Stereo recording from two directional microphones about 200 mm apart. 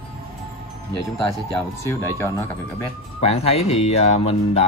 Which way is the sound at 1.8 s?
15° left (ahead or behind).